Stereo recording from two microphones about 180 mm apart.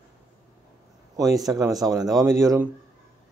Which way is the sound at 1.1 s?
20° right (ahead or behind).